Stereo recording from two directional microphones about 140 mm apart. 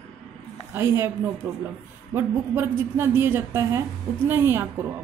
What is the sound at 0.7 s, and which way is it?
A woman's voice, 20° right (ahead or behind).